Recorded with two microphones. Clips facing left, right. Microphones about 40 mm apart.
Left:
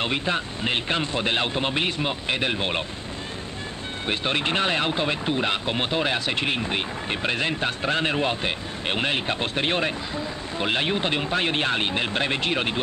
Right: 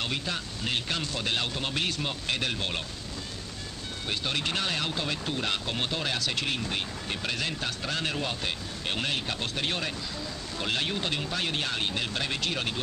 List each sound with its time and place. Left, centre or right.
0.0 s speech: left
4.1 s speech: left